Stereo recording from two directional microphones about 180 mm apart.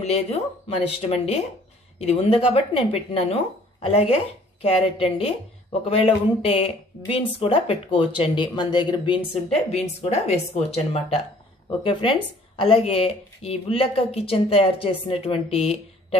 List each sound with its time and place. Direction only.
0.0 s a woman's voice: 35° left (ahead or behind)